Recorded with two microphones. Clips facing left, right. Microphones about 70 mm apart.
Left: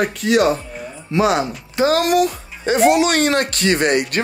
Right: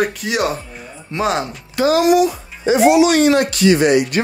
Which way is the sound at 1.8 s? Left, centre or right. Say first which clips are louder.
Right 2 dB; left.